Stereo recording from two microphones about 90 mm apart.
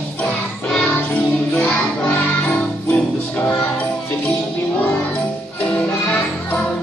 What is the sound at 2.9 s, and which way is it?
Music, 25° left (ahead or behind).